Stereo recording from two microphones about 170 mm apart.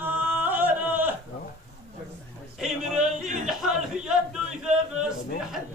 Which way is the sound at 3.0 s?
50° right (ahead or behind).